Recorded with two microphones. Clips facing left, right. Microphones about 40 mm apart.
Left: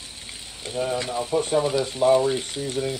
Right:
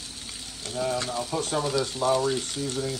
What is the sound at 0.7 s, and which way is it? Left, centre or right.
Speech, left.